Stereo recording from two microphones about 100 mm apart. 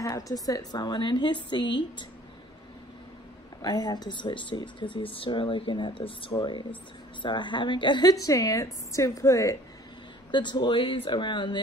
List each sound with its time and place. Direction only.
0.0 s speech: 35° left (ahead or behind)
3.6 s speech: 40° left (ahead or behind); by 6.3 s 60° left (ahead or behind)
6.3 s a woman's voice: 50° left (ahead or behind); by 9.6 s 30° left (ahead or behind)
10.3 s speech: 50° left (ahead or behind)